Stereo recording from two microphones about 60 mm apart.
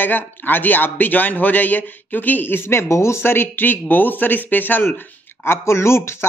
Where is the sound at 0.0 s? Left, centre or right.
Left.